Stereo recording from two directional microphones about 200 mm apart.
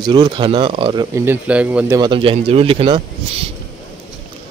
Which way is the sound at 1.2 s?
10° right (ahead or behind).